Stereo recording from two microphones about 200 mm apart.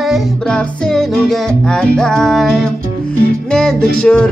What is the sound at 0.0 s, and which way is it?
Music, centre (ahead or behind).